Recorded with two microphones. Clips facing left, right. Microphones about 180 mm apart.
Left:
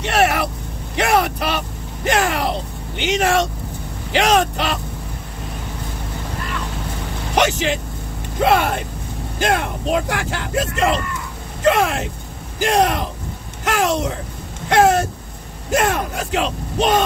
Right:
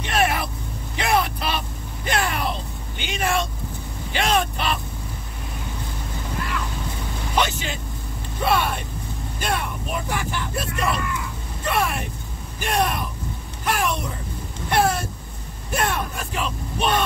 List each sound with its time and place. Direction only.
0.0 s vehicle: 70° left (ahead or behind)
2.0 s a sound: 90° left
3.0 s speech: 80° left
7.3 s speech: 80° left
13.7 s a sound: 90° left
15.7 s speech: 90° left